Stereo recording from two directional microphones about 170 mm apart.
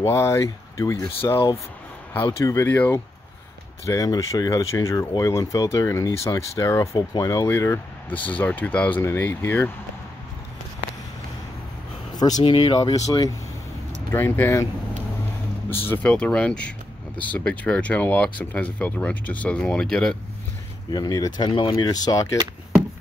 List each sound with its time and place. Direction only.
0.0 s speech: 15° left (ahead or behind)
12.2 s speech: 25° left (ahead or behind)
15.9 s speech: 10° left (ahead or behind)
20.9 s speech: 20° left (ahead or behind)